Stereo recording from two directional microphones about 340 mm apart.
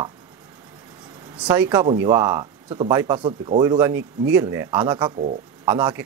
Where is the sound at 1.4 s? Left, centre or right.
Centre.